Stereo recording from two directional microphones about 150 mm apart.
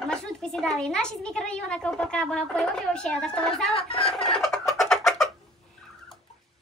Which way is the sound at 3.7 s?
40° left (ahead or behind).